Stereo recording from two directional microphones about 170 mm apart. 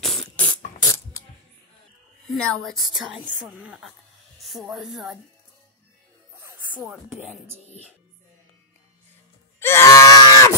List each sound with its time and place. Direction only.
0.0 s beatboxing: 5° left (ahead or behind)
0.8 s mechanisms: 15° left (ahead or behind)
2.3 s a woman's voice: 5° left (ahead or behind)
6.8 s a woman's voice: centre (ahead or behind)
9.6 s groan: 15° left (ahead or behind)